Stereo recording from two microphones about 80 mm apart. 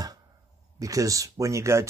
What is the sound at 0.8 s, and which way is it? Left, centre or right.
Speech, right.